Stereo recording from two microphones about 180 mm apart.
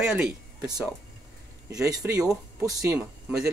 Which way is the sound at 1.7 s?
20° right (ahead or behind).